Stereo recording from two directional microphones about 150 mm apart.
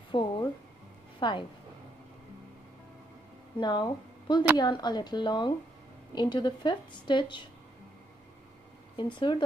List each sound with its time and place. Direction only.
0.1 s a woman's voice: 35° left (ahead or behind)
3.5 s a woman's voice: 30° left (ahead or behind)
8.9 s a woman's voice: 30° left (ahead or behind)